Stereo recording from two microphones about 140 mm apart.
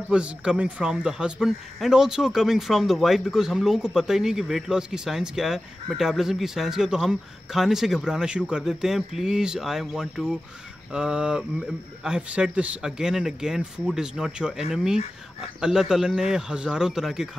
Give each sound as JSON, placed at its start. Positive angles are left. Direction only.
{"t": 0.1, "sound": "speech", "side_deg": -5}